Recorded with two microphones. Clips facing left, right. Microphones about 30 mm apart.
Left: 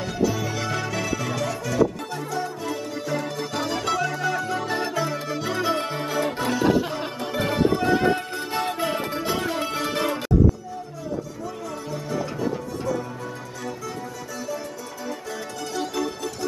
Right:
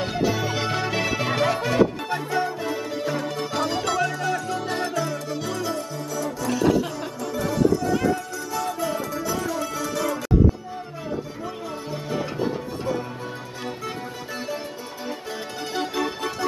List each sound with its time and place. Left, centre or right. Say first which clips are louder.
0.0 s music: right 1 dB; right
2.7 s music: right 1 dB; centre
4.8 s music: even; centre
5.8 s music: left 4 dB; left
6.5 s music: right 1 dB; centre
7.3 s music: even; left
11.9 s music: even; right
15.7 s music: right 1 dB; right